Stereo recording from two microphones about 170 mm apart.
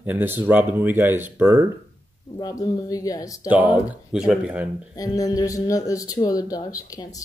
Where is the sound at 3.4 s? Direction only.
10° right (ahead or behind).